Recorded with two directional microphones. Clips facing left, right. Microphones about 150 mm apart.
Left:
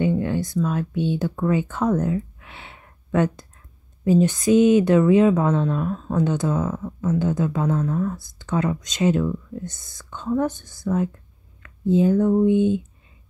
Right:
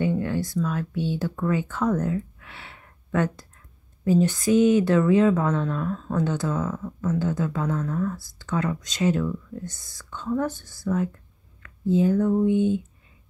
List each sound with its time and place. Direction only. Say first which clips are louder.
0.0 s speech: left 3 dB; 20° left (ahead or behind)